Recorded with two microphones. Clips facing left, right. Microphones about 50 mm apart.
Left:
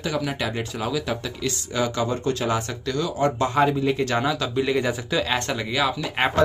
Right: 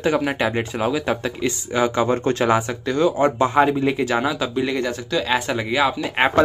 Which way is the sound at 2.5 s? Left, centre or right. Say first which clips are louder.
Right 6 dB; right.